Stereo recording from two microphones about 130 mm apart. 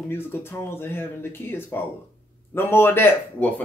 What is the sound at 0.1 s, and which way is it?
Speech, 15° left (ahead or behind).